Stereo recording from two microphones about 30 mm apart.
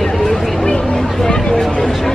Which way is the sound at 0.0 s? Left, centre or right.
Centre.